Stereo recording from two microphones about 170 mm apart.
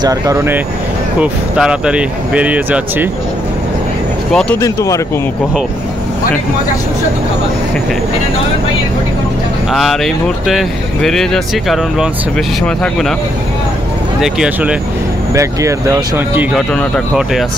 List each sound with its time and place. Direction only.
0.0 s speech: 20° right (ahead or behind)
1.2 s speech: 5° right (ahead or behind)
4.3 s speech: 5° left (ahead or behind)
4.6 s speech: 20° left (ahead or behind)
9.7 s speech: centre (ahead or behind)
14.2 s speech: 5° right (ahead or behind)
15.3 s speech: 15° right (ahead or behind)
16.5 s speech: centre (ahead or behind)